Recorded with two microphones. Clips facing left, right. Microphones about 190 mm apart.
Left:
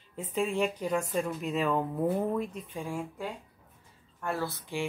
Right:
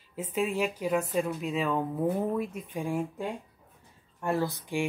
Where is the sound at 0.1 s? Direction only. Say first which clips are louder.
Right 1 dB; 5° right (ahead or behind).